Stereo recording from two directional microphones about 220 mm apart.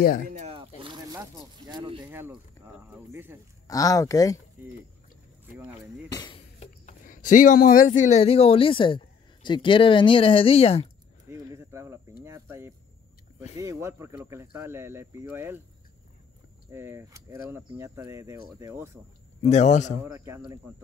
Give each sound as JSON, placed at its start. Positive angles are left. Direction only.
{"t": 0.0, "sound": "speech", "side_deg": 40}
{"t": 0.3, "sound": "a sound", "side_deg": -30}
{"t": 1.1, "sound": "speech", "side_deg": -15}
{"t": 2.1, "sound": "speech", "side_deg": -10}
{"t": 3.6, "sound": "speech", "side_deg": 15}
{"t": 6.0, "sound": "speech", "side_deg": 20}
{"t": 6.6, "sound": "speech", "side_deg": 35}
{"t": 11.2, "sound": "a sound", "side_deg": -10}
{"t": 13.6, "sound": "speech", "side_deg": -15}
{"t": 16.7, "sound": "speech", "side_deg": -10}
{"t": 19.4, "sound": "speech", "side_deg": 30}
{"t": 20.2, "sound": "speech", "side_deg": -10}